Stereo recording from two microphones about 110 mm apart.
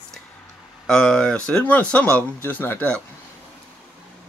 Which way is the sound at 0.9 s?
5° left (ahead or behind).